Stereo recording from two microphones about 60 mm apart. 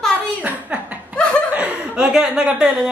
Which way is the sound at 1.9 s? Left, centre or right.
Centre.